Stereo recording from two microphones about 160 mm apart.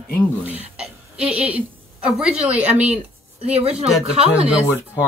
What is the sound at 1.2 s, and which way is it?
Speech, 5° right (ahead or behind).